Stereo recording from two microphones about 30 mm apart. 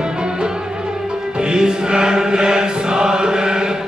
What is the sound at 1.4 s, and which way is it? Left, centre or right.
Music, right.